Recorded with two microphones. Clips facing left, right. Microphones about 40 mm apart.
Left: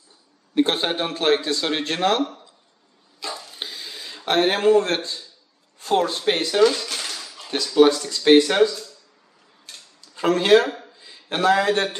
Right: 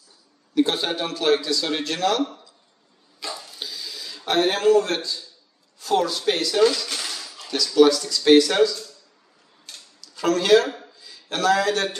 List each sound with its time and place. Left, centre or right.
0.6 s a man's voice: left
3.5 s a sound: left
4.3 s a man's voice: left
6.9 s dishes: centre
7.3 s a man's voice: left
9.9 s a man's voice: left